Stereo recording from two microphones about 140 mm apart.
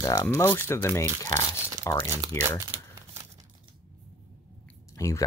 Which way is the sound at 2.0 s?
25° right (ahead or behind).